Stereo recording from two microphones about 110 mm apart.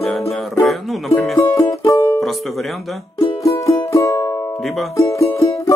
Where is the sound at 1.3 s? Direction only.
30° left (ahead or behind).